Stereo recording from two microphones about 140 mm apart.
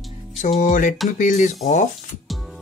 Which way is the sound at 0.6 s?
65° left (ahead or behind).